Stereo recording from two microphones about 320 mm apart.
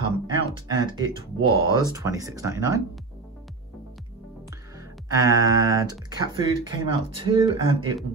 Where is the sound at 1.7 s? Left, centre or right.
Centre.